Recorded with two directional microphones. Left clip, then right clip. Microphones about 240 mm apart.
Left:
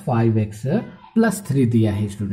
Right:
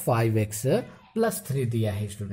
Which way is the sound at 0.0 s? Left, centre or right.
Right.